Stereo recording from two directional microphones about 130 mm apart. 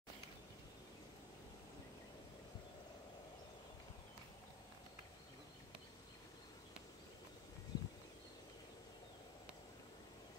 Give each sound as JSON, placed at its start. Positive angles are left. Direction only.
{"t": 7.7, "sound": "horse", "side_deg": 30}